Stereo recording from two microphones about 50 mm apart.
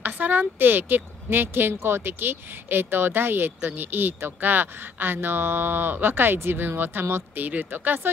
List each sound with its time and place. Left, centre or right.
0.0 s speech: right
7.3 s speech: right